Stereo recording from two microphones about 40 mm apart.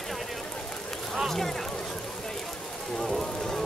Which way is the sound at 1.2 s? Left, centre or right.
Centre.